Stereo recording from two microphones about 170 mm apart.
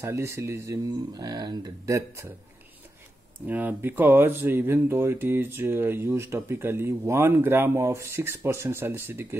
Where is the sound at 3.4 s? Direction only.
10° right (ahead or behind).